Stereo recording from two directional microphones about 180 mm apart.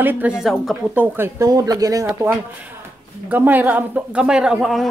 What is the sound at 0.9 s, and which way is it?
Speech, 10° right (ahead or behind).